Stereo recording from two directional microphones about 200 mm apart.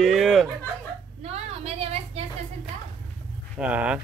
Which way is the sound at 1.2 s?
30° right (ahead or behind).